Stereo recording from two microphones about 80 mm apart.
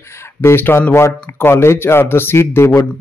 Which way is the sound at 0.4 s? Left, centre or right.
Left.